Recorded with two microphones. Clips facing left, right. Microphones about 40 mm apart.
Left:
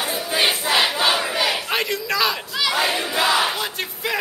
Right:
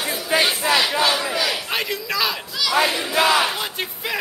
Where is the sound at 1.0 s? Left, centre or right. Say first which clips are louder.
Left 1 dB; centre.